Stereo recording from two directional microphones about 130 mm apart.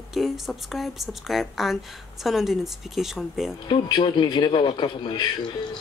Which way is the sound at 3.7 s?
35° left (ahead or behind).